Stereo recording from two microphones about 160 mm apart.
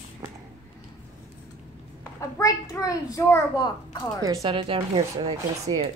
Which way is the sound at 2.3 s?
20° left (ahead or behind).